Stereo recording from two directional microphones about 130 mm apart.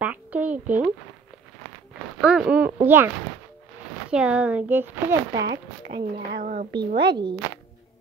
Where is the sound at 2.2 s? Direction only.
5° right (ahead or behind).